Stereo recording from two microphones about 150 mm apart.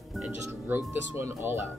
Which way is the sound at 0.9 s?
15° right (ahead or behind).